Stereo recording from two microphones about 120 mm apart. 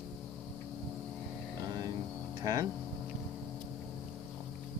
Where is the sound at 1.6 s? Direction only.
35° right (ahead or behind).